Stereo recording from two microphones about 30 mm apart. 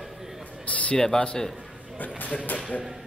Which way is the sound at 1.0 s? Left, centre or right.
Left.